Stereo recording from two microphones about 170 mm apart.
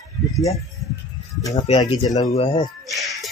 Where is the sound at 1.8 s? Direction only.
20° left (ahead or behind).